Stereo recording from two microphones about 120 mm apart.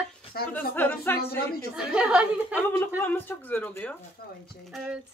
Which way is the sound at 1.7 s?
10° right (ahead or behind).